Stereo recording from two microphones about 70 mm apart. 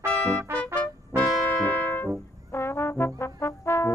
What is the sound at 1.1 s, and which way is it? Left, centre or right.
Music, right.